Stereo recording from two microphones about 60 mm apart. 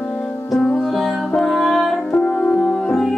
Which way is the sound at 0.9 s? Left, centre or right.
Centre.